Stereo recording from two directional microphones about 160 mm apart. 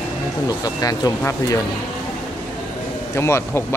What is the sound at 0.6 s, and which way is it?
Speech, 25° left (ahead or behind).